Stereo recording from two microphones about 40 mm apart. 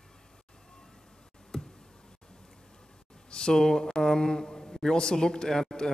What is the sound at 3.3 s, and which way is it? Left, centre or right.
Speech, centre.